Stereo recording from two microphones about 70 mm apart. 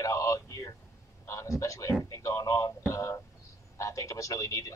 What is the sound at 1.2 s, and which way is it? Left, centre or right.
A man's voice, left.